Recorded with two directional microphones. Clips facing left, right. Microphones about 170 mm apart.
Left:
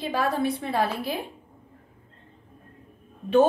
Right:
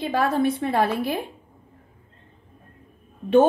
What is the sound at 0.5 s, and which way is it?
Speech, 55° right (ahead or behind).